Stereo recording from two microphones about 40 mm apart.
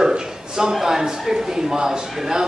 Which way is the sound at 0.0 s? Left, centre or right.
Centre.